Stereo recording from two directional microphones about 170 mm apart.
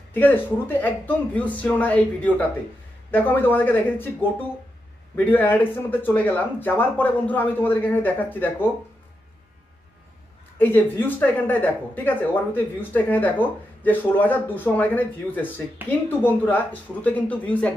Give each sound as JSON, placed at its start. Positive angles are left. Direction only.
{"t": 0.1, "sound": "speech", "side_deg": 10}
{"t": 10.6, "sound": "speech", "side_deg": 10}